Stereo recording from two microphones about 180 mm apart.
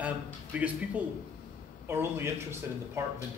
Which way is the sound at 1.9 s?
15° right (ahead or behind).